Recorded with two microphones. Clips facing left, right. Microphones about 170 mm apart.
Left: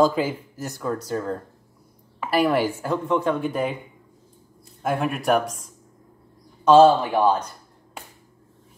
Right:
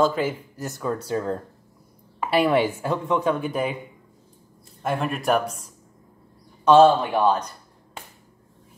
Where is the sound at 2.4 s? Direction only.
5° right (ahead or behind).